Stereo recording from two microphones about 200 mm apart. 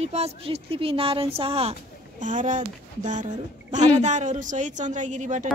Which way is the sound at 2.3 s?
40° right (ahead or behind).